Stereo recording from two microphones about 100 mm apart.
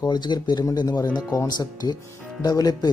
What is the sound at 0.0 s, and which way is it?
Speech, 45° left (ahead or behind).